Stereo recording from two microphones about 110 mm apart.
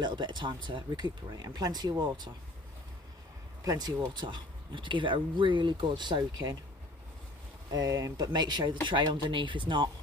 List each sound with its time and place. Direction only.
0.0 s speech: 45° right (ahead or behind)
3.6 s speech: 40° right (ahead or behind)
7.7 s speech: 30° right (ahead or behind); by 9.8 s 50° right (ahead or behind)